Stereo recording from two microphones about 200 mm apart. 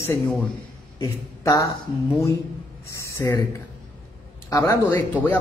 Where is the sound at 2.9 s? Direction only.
15° left (ahead or behind).